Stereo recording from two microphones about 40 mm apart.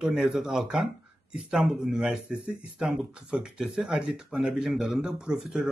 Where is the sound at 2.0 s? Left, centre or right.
Centre.